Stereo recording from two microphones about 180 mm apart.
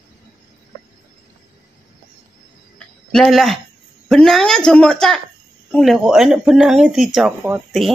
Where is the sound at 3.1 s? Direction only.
Centre (ahead or behind).